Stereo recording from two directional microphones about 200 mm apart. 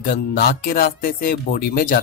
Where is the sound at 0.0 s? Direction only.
45° left (ahead or behind).